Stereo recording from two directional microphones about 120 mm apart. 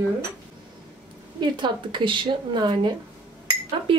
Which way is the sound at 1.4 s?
40° right (ahead or behind).